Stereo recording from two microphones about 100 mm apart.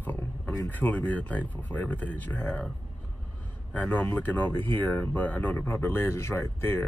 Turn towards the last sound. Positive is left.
turn(degrees=25)  # may be behind; listen again after turning